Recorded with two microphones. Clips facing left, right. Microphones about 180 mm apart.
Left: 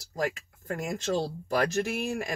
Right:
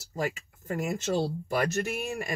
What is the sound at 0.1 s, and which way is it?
Speech, 5° right (ahead or behind).